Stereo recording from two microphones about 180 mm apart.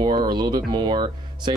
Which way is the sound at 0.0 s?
25° right (ahead or behind).